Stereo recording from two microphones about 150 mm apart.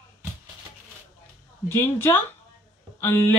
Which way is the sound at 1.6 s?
15° left (ahead or behind).